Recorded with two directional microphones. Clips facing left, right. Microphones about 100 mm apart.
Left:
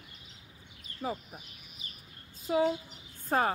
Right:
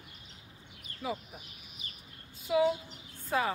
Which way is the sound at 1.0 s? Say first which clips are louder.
Left 1 dB; 50° left (ahead or behind).